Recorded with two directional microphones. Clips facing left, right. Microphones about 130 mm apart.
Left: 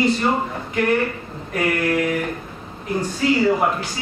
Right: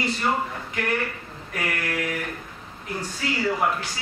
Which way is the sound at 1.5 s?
30° left (ahead or behind).